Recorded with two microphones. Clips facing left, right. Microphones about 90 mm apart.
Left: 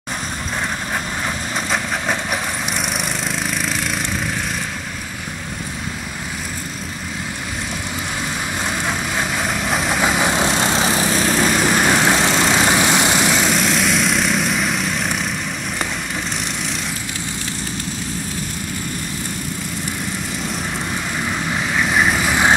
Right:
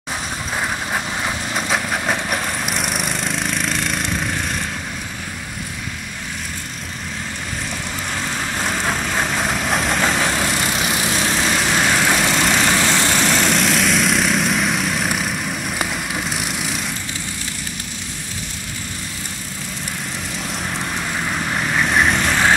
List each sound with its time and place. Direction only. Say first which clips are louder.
1.7 s lawn mower: right 1 dB; centre (ahead or behind)
8.7 s vehicle: right 2 dB; centre (ahead or behind)
10.3 s vehicle: left 3 dB; 20° left (ahead or behind); by 11.3 s 40° left (ahead or behind)
11.4 s vehicle: left 2 dB; 5° left (ahead or behind)
12.0 s vehicle: left 2 dB; 20° left (ahead or behind)
12.3 s vehicle: left 1 dB; 10° left (ahead or behind)
21.3 s vehicle: even; 5° right (ahead or behind)